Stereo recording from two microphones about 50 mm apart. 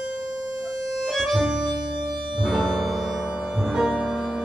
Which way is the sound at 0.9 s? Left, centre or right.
Centre.